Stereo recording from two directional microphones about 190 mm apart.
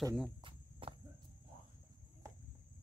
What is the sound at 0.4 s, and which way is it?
Insect, 25° right (ahead or behind).